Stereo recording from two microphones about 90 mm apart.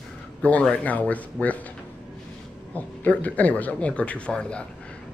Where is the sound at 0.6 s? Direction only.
15° left (ahead or behind).